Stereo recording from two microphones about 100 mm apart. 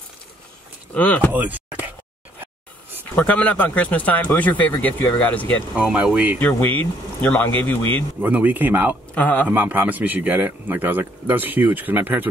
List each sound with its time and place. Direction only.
0.9 s speech: 15° left (ahead or behind)
1.3 s a sound: 15° right (ahead or behind)
3.2 s speech: 15° left (ahead or behind)
5.8 s speech: 10° right (ahead or behind)
6.4 s speech: 20° left (ahead or behind)
8.2 s speech: 15° right (ahead or behind)
9.1 s speech: 15° left (ahead or behind)
9.5 s speech: 20° right (ahead or behind)